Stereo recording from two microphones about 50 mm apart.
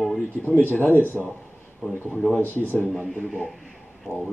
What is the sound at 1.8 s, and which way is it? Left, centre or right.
Speech, centre.